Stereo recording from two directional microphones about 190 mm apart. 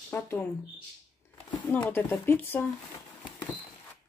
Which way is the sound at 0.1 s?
10° left (ahead or behind).